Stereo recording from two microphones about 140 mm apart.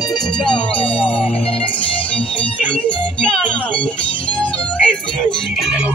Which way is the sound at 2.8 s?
10° left (ahead or behind).